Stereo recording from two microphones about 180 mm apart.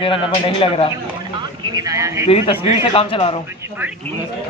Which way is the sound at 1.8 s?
20° right (ahead or behind).